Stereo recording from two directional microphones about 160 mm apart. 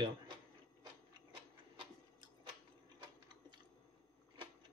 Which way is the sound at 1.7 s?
30° right (ahead or behind).